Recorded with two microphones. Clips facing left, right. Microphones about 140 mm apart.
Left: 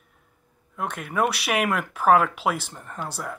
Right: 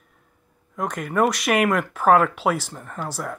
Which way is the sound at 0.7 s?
5° left (ahead or behind).